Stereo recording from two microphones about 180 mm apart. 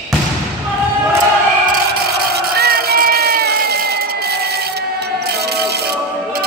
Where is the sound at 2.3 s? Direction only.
60° right (ahead or behind).